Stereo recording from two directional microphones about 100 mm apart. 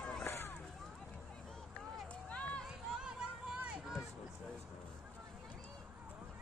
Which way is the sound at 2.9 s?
5° right (ahead or behind).